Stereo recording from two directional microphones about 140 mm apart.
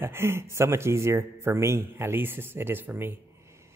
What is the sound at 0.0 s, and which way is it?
A man's voice, 15° right (ahead or behind).